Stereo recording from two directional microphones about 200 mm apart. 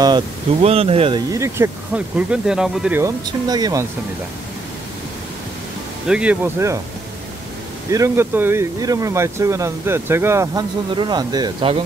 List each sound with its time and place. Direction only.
0.0 s speech: 25° right (ahead or behind)
2.1 s speech: 5° right (ahead or behind)
6.0 s speech: 5° right (ahead or behind)
7.9 s speech: 15° right (ahead or behind)